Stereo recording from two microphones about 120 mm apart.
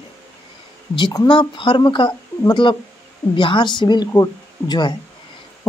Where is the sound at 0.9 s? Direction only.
40° left (ahead or behind).